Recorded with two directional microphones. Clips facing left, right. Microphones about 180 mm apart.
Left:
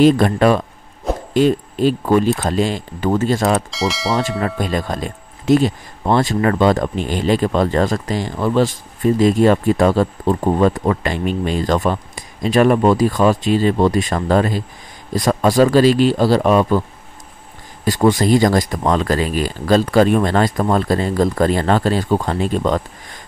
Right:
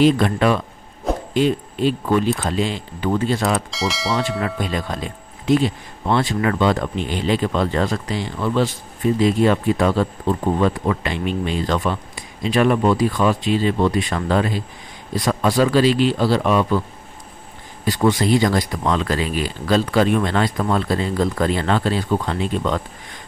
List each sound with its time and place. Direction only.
0.0 s speech: 45° left (ahead or behind)
3.7 s bell: centre (ahead or behind)
4.4 s speech: 45° left (ahead or behind)
17.8 s speech: 45° left (ahead or behind)